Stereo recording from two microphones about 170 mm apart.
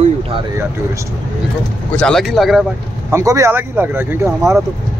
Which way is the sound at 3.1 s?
15° right (ahead or behind).